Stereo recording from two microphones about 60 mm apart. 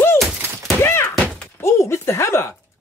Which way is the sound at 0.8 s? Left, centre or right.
Left.